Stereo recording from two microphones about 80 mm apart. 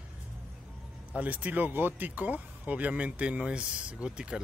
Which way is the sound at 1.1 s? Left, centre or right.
Centre.